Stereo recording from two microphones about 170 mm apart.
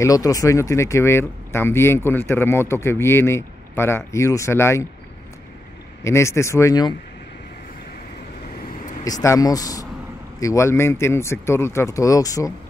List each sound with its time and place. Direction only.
0.0 s speech: 20° left (ahead or behind)
6.0 s speech: 15° left (ahead or behind)
9.0 s speech: 20° left (ahead or behind)